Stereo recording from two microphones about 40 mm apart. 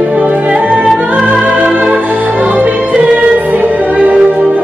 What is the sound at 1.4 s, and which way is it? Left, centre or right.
Music, right.